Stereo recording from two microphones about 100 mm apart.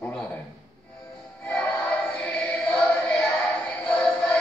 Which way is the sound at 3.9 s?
15° left (ahead or behind).